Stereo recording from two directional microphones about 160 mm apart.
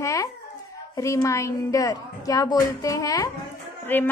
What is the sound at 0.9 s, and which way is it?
A woman's voice, 20° left (ahead or behind).